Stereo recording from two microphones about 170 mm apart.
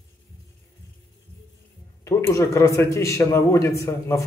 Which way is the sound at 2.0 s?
15° left (ahead or behind).